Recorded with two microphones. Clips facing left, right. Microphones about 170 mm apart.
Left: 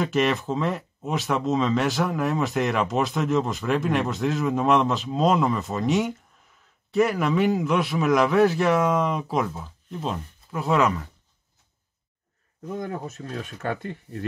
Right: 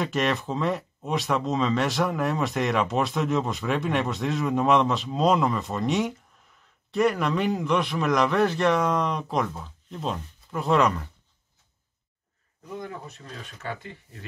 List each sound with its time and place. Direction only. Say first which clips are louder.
0.0 s speech: left 3 dB; centre (ahead or behind)
12.7 s speech: left 5 dB; 50° left (ahead or behind)